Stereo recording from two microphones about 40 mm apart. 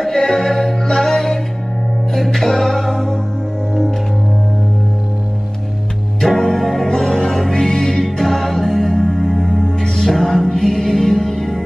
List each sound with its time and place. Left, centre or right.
0.1 s music: centre
6.3 s music: centre
6.9 s music: centre
9.8 s music: centre